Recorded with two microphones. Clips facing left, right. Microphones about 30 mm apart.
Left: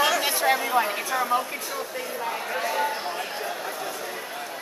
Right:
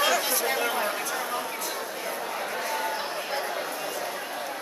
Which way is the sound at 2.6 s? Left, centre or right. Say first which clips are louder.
Left 6 dB; centre.